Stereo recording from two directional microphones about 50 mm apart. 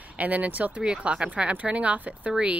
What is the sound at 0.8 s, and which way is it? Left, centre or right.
Speech, centre.